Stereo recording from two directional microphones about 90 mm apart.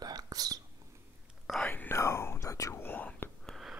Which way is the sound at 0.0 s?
45° right (ahead or behind).